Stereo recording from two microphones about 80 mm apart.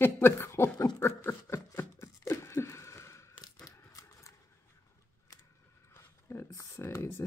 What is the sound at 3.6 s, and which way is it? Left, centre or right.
Crumpling, left.